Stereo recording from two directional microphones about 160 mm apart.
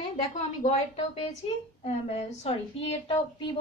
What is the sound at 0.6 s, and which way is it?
A woman's voice, 45° left (ahead or behind).